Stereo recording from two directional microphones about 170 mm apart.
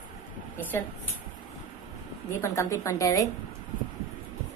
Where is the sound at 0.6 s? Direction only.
10° left (ahead or behind).